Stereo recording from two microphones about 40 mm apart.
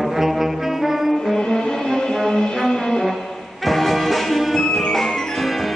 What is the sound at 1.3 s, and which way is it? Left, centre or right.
Music, centre.